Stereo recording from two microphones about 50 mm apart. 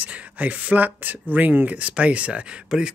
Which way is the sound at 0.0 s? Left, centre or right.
Right.